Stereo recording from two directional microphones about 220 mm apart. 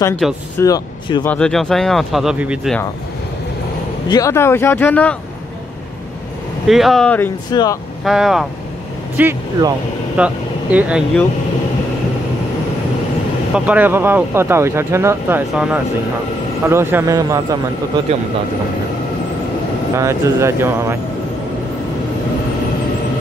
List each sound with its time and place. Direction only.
0.0 s speech: 10° left (ahead or behind)
1.2 s speech: 5° left (ahead or behind)
4.1 s speech: 15° left (ahead or behind)
6.7 s speech: centre (ahead or behind)
7.5 s speech: 15° left (ahead or behind)
8.0 s speech: centre (ahead or behind)
9.1 s speech: 15° right (ahead or behind)
13.7 s speech: 10° right (ahead or behind)
20.0 s speech: 15° right (ahead or behind)